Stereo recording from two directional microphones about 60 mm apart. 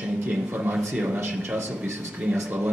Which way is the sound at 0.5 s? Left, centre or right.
Right.